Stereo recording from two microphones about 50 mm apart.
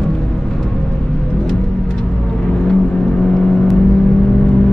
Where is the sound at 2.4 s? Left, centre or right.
Centre.